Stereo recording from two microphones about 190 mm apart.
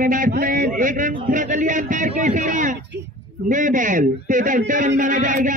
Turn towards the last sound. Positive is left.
turn(degrees=-45)  # may be behind; listen again after turning